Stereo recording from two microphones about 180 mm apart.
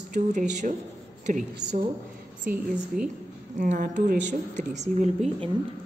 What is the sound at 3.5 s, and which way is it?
A man's voice, 45° right (ahead or behind).